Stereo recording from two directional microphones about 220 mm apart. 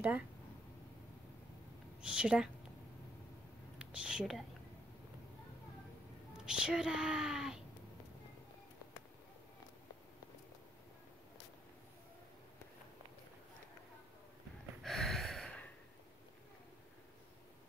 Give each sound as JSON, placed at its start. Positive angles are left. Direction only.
{"t": 2.0, "sound": "a woman's voice", "side_deg": -5}
{"t": 3.7, "sound": "speech", "side_deg": -5}
{"t": 6.3, "sound": "speech", "side_deg": -5}
{"t": 14.8, "sound": "a sound", "side_deg": 0}